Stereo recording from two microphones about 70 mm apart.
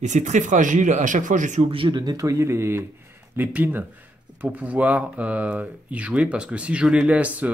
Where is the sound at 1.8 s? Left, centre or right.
Right.